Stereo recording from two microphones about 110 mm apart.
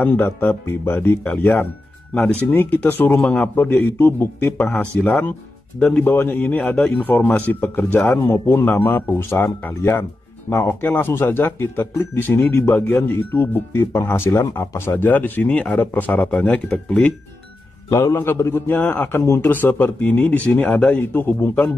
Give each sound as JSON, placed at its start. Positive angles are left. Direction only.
{"t": 0.0, "sound": "speech", "side_deg": 15}
{"t": 17.8, "sound": "speech", "side_deg": 25}